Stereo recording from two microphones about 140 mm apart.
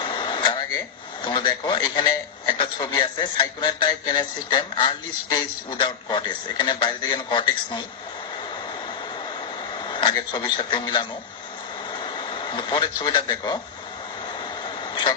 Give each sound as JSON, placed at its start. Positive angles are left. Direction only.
{"t": 0.0, "sound": "a man's voice", "side_deg": 35}
{"t": 9.8, "sound": "speech", "side_deg": 35}